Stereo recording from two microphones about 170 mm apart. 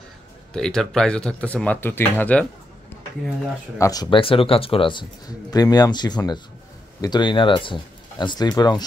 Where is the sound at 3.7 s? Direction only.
20° left (ahead or behind).